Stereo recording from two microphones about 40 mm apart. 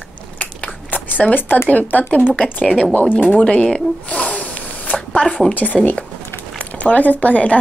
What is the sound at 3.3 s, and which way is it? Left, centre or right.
Speech, left.